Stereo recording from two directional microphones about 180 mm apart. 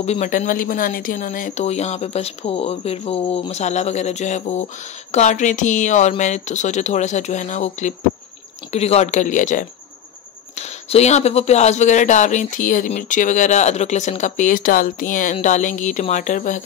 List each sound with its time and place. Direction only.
0.0 s speech: 40° left (ahead or behind)